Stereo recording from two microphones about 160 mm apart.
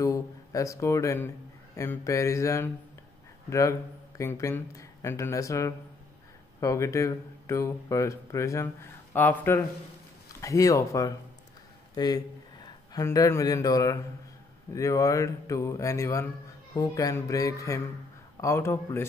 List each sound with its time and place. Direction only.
0.0 s a man's voice: 20° left (ahead or behind)